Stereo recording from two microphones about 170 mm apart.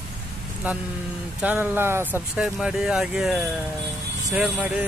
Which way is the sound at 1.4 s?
10° right (ahead or behind).